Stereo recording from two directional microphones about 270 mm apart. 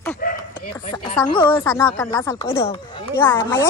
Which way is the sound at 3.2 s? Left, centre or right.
Centre.